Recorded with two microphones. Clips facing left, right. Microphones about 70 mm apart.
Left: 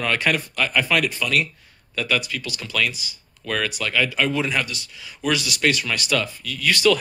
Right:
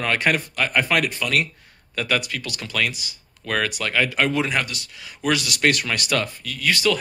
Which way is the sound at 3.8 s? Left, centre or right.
Right.